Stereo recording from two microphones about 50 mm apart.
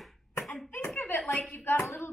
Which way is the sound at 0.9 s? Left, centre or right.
Left.